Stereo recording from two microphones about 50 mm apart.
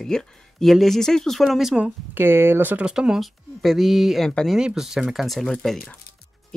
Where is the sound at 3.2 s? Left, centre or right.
Centre.